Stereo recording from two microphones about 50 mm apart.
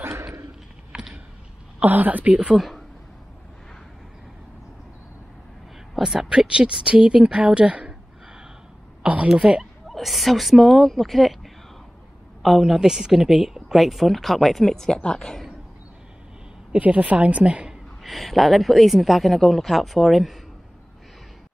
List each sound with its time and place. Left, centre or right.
0.9 s a sound: centre
1.8 s a woman's voice: right
5.9 s speech: centre
9.0 s a woman's voice: right
9.3 s speech: centre
9.8 s a woman's voice: centre
16.7 s speech: right
18.0 s a woman's voice: centre